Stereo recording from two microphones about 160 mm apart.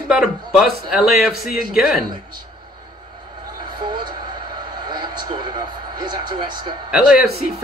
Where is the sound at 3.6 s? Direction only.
30° right (ahead or behind).